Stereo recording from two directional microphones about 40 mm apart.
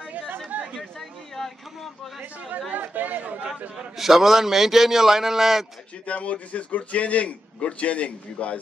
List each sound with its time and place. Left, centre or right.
0.7 s a sound: centre
2.7 s speech: right
3.4 s a man's voice: right
3.7 s a man's voice: centre
6.0 s a man's voice: left